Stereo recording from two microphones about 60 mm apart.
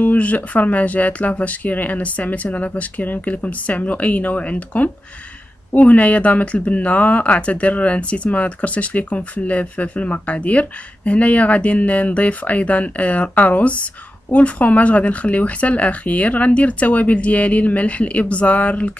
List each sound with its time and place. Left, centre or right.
0.0 s speech: left